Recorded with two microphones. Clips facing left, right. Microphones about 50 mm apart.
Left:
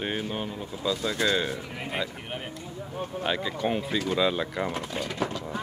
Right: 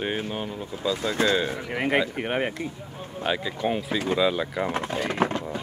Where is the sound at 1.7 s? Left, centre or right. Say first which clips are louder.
Right 8 dB; right.